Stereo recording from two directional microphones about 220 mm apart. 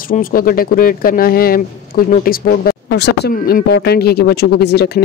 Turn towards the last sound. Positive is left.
turn(degrees=45)  # may be behind; listen again after turning